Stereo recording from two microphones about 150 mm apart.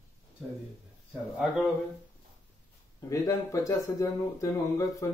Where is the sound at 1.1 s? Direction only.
Centre (ahead or behind).